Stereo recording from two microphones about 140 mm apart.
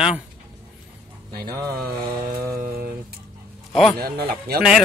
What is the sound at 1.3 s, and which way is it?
Speech, 90° right.